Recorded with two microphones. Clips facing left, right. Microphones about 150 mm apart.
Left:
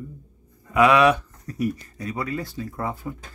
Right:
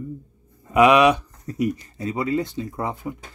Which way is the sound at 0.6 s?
20° right (ahead or behind).